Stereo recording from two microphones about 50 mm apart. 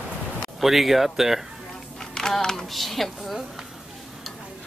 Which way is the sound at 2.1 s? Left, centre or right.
Centre.